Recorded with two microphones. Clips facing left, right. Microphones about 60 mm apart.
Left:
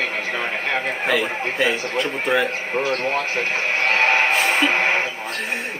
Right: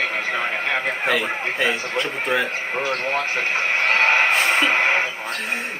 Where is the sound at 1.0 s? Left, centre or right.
Centre.